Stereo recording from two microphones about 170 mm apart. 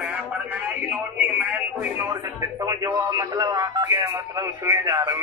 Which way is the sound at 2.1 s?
20° right (ahead or behind).